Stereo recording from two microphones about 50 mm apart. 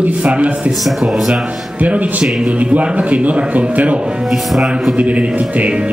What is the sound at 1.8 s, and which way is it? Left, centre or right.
A man's voice, right.